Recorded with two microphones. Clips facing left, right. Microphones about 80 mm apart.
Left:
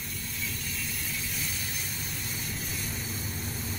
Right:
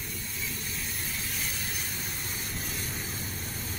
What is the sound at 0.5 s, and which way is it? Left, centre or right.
Vehicle, right.